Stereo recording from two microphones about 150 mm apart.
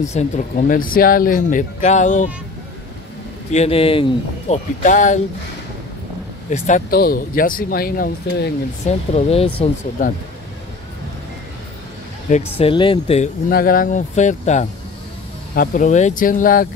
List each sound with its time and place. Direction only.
0.1 s speech: 50° left (ahead or behind)
3.5 s speech: 40° left (ahead or behind)
4.8 s speech: 55° left (ahead or behind)
6.5 s speech: 55° left (ahead or behind)
6.9 s speech: 85° left
8.8 s speech: 45° left (ahead or behind)
10.0 s speech: 65° left (ahead or behind)
12.3 s speech: 45° left (ahead or behind)
13.5 s speech: 75° left (ahead or behind); by 14.7 s 50° left (ahead or behind)
15.5 s speech: 65° left (ahead or behind)